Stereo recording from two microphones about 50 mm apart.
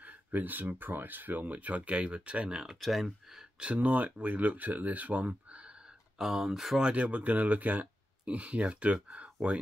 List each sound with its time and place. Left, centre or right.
0.0 s speech: right; by 2.8 s centre
2.8 s speech: centre
3.5 s speech: right
6.1 s speech: centre
6.8 s speech: right